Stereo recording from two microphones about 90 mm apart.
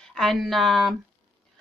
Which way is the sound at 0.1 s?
5° left (ahead or behind).